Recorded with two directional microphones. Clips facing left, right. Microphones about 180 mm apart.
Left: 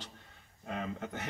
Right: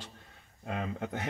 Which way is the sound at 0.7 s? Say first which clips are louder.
Right 3 dB; 55° right (ahead or behind).